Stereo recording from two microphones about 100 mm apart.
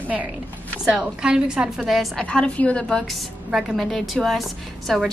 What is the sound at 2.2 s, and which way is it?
A woman's voice, 10° left (ahead or behind).